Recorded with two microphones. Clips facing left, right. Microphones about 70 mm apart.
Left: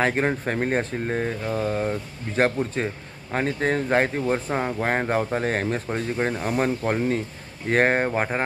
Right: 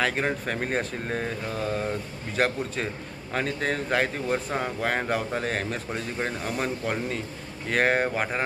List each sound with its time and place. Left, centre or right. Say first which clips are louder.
0.0 s speech: left 4 dB; left